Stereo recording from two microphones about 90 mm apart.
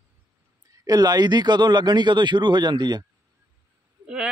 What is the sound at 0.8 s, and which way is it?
Speech, 45° right (ahead or behind).